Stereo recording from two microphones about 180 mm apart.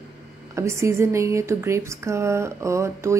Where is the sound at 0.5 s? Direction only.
15° right (ahead or behind).